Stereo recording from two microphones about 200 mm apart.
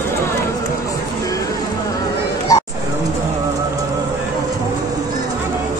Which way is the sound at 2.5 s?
15° left (ahead or behind).